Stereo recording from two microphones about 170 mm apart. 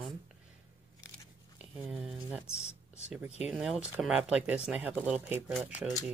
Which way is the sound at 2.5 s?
40° left (ahead or behind).